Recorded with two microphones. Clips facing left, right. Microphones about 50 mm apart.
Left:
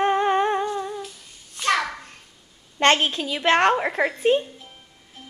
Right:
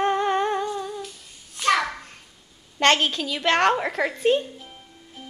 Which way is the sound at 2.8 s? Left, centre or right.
Left.